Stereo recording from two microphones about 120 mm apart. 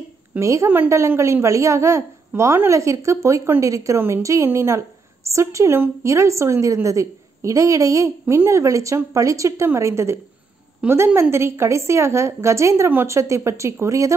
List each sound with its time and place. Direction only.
0.4 s a woman's voice: 25° right (ahead or behind)